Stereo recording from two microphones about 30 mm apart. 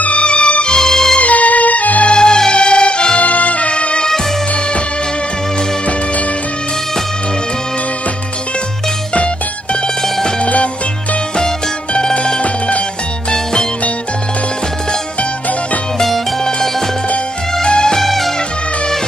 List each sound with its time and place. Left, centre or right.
0.0 s music: left
0.7 s music: centre
1.2 s music: left
2.1 s music: left
3.2 s music: left
3.7 s music: left
10.4 s music: left
12.0 s music: left
13.3 s music: left
18.0 s music: centre